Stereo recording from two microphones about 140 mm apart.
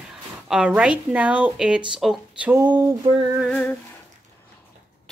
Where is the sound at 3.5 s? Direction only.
10° left (ahead or behind).